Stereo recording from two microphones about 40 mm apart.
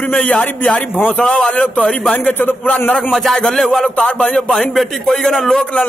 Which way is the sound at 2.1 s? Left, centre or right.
Left.